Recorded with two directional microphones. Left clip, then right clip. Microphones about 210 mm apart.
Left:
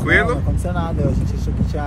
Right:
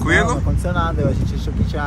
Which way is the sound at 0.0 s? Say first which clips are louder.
Left 1 dB; 15° right (ahead or behind).